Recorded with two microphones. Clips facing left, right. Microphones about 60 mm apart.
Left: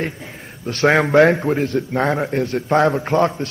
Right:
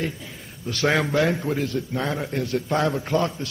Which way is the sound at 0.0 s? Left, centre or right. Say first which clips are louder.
Left 3 dB; left.